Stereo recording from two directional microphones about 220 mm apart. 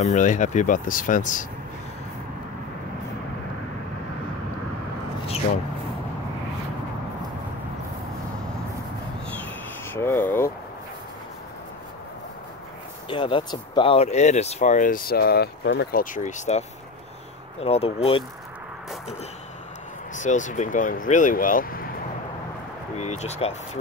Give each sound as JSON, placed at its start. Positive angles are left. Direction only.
{"t": 0.0, "sound": "speech", "side_deg": 35}
{"t": 9.3, "sound": "a sound", "side_deg": 10}
{"t": 13.1, "sound": "speech", "side_deg": 20}
{"t": 20.2, "sound": "speech", "side_deg": 35}
{"t": 22.9, "sound": "speech", "side_deg": 30}